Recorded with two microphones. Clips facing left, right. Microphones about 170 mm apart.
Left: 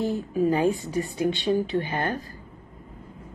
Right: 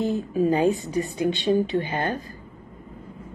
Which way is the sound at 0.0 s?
20° right (ahead or behind).